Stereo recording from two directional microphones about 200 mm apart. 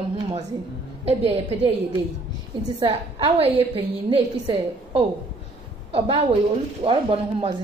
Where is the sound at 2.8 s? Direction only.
25° right (ahead or behind).